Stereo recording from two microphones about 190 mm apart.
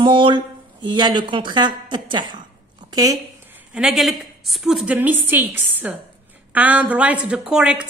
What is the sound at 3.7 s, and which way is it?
A woman's voice, 5° right (ahead or behind).